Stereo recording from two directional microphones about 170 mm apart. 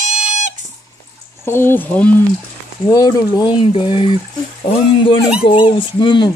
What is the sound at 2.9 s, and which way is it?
Speech, 20° left (ahead or behind).